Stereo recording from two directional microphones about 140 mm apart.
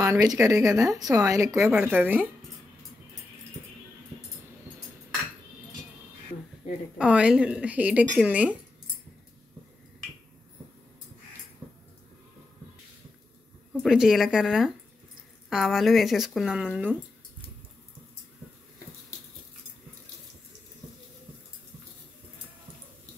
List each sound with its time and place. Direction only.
0.0 s a woman's voice: 25° right (ahead or behind)
7.0 s a woman's voice: 5° right (ahead or behind)
13.8 s speech: 5° right (ahead or behind)